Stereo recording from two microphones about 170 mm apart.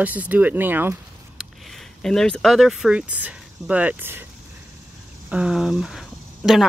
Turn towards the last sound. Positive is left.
turn(degrees=0)  # may be behind; listen again after turning